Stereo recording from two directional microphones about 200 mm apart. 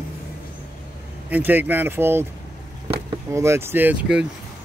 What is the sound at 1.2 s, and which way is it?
Speech, 10° right (ahead or behind).